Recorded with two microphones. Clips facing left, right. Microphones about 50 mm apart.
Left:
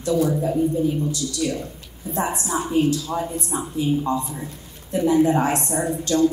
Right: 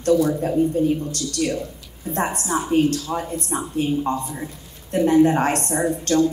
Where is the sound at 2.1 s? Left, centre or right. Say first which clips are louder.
Right 1 dB; right.